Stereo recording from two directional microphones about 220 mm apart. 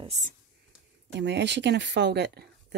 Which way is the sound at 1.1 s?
50° right (ahead or behind).